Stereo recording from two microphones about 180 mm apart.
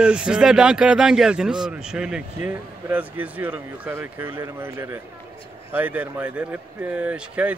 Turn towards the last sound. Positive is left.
turn(degrees=-5)  # may be behind; listen again after turning